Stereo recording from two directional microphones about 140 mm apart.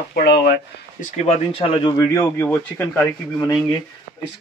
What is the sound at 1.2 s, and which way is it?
Speech, 50° left (ahead or behind).